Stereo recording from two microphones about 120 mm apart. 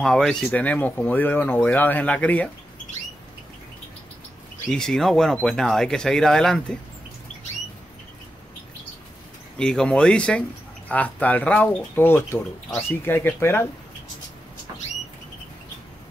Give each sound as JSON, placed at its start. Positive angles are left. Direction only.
{"t": 0.0, "sound": "speech", "side_deg": 5}
{"t": 4.6, "sound": "speech", "side_deg": 5}
{"t": 9.6, "sound": "speech", "side_deg": 5}